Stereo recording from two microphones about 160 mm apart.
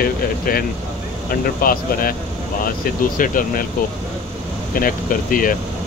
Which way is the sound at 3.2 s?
60° left (ahead or behind).